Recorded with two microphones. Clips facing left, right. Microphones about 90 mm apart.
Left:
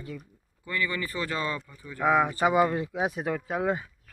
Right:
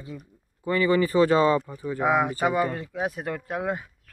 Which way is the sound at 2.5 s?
10° left (ahead or behind).